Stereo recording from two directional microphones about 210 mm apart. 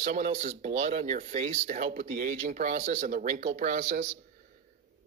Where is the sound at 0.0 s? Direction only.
35° right (ahead or behind).